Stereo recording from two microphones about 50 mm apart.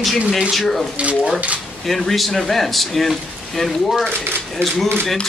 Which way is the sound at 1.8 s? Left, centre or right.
Centre.